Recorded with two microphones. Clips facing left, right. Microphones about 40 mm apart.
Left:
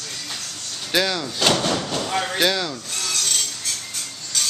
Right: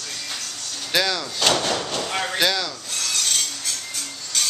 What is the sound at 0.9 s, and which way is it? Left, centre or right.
Speech, centre.